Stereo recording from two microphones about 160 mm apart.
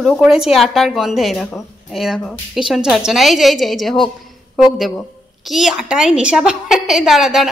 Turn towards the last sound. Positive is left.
turn(degrees=0)  # may be behind; listen again after turning